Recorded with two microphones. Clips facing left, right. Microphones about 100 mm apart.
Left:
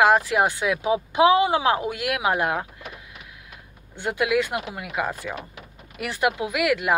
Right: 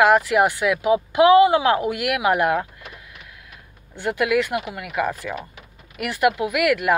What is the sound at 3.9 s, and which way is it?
Speech, 20° left (ahead or behind).